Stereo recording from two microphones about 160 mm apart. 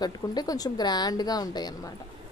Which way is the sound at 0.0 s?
25° left (ahead or behind).